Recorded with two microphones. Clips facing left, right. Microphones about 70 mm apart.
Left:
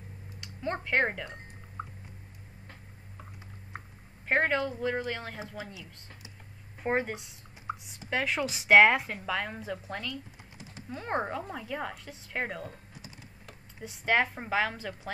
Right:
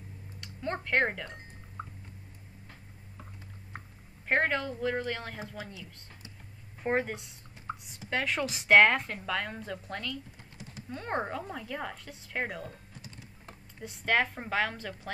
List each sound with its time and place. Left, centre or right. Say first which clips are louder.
0.4 s drip: left 1 dB; centre
4.3 s speech: left 1 dB; centre
6.8 s speech: even; centre